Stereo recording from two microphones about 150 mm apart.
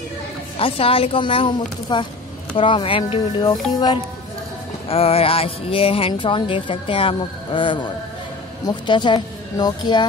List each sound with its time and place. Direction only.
0.6 s music: 40° left (ahead or behind)
3.7 s speech: 25° left (ahead or behind)
4.8 s music: 40° left (ahead or behind)
8.6 s speech: 30° left (ahead or behind)